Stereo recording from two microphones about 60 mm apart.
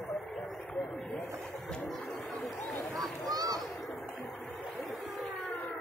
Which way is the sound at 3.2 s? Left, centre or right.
Right.